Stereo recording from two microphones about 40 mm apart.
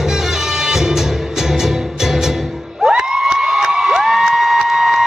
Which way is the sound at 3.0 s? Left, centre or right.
Centre.